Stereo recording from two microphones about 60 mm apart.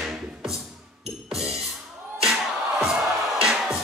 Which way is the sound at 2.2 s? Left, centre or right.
Centre.